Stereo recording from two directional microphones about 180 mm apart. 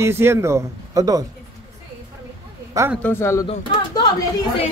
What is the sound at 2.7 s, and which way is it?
Speech, 15° right (ahead or behind).